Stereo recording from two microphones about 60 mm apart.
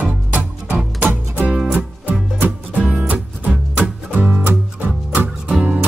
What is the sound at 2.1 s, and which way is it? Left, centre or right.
Music, right.